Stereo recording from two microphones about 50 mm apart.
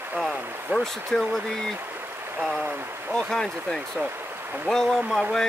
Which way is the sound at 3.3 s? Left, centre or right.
Centre.